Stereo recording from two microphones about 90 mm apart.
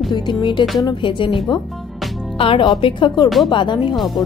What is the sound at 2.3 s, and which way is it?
Speech, 90° left.